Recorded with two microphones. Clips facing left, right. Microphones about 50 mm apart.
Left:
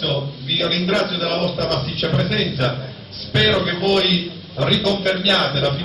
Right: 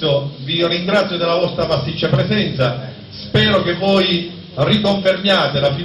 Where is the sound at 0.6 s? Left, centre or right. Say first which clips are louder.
Right 4 dB; right.